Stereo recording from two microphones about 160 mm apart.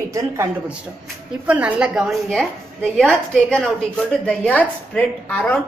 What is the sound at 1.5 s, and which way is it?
A woman's voice, 5° right (ahead or behind).